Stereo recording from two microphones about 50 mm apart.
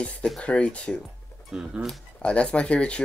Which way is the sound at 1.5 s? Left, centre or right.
Centre.